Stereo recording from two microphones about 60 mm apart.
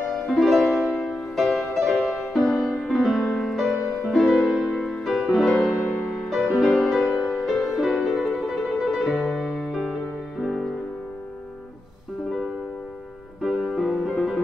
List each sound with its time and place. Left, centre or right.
0.1 s music: centre
5.7 s music: left
6.1 s music: centre
13.4 s music: centre